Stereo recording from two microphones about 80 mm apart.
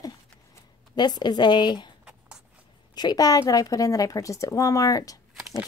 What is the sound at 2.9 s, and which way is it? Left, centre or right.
A woman's voice, left.